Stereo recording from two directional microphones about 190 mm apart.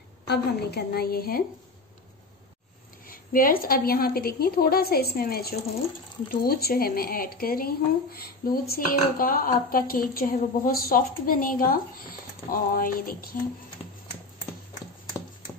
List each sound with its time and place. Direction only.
0.3 s a woman's voice: 60° left (ahead or behind)
3.1 s speech: 50° left (ahead or behind)